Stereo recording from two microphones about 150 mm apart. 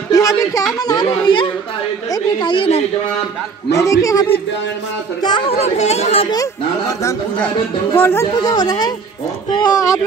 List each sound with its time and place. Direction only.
0.1 s a sound: 25° left (ahead or behind)
0.7 s a woman's voice: 25° left (ahead or behind)
3.7 s speech: 20° left (ahead or behind)
5.6 s speech: 45° left (ahead or behind)
6.3 s speech: 20° left (ahead or behind)
8.4 s speech: 25° left (ahead or behind)